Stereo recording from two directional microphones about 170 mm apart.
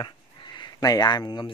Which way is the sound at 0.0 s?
25° left (ahead or behind).